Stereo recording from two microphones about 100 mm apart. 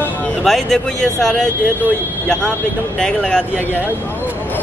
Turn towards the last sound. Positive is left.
turn(degrees=5)  # may be behind; listen again after turning